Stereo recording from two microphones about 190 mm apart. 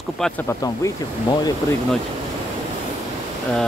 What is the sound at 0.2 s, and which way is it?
Speech, 10° left (ahead or behind).